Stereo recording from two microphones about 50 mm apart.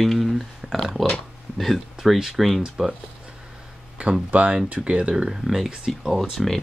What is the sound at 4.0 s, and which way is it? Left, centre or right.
Speech, right.